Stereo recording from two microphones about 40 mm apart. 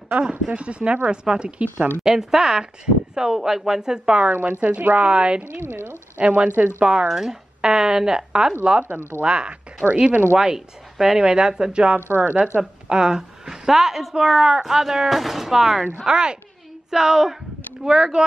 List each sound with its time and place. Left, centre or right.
0.3 s speech: right
2.0 s speech: centre
4.2 s a woman's voice: right
5.0 s speech: right
5.4 s speech: right
6.1 s a woman's voice: right
7.1 s speech: centre; by 9.6 s right
9.8 s speech: centre
10.3 s speech: centre
12.1 s a woman's voice: right
12.8 s speech: centre
16.0 s speech: right